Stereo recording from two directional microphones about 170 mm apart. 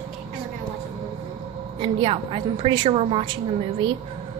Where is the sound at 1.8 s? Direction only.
30° right (ahead or behind).